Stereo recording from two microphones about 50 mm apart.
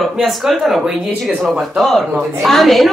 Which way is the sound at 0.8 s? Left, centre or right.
Centre.